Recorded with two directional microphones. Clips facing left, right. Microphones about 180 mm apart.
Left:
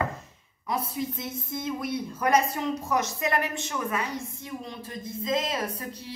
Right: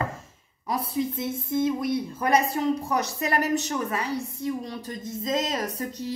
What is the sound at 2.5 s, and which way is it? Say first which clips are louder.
A woman's voice: right 3 dB; 35° right (ahead or behind).